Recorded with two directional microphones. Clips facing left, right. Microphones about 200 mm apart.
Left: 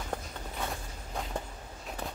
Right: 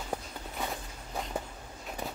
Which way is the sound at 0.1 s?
10° right (ahead or behind).